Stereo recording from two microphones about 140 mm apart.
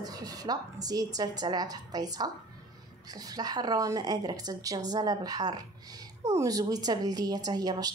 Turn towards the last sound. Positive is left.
turn(degrees=-30)  # may be behind; listen again after turning